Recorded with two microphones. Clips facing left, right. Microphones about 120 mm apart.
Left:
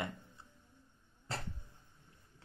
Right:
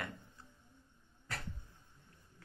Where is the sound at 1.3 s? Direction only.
30° left (ahead or behind).